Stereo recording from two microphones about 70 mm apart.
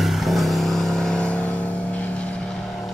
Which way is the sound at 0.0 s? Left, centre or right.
Centre.